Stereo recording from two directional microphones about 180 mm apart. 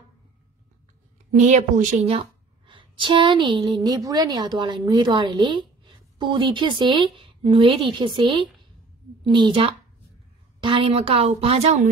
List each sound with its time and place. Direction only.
1.4 s a woman's voice: 45° right (ahead or behind)